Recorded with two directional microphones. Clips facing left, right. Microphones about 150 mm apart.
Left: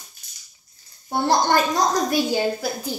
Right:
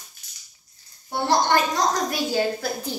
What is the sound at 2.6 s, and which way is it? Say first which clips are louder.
Speech: left 1 dB; 5° left (ahead or behind).